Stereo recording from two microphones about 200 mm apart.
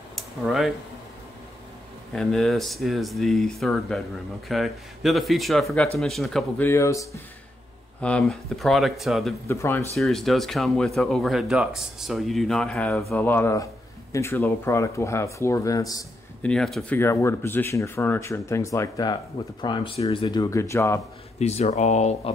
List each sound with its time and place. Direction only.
0.1 s a sound: centre (ahead or behind)
2.1 s speech: centre (ahead or behind)
6.7 s speech: 15° left (ahead or behind)
8.0 s speech: 5° left (ahead or behind)
9.5 s speech: 15° left (ahead or behind)
9.9 s speech: centre (ahead or behind); by 16.1 s 15° left (ahead or behind)
16.4 s speech: centre (ahead or behind)
17.0 s speech: 15° left (ahead or behind)
21.4 s speech: 35° left (ahead or behind)